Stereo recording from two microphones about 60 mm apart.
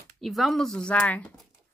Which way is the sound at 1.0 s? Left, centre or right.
Left.